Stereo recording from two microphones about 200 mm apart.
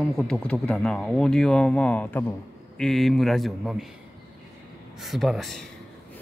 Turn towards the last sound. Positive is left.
turn(degrees=0)  # may be behind; listen again after turning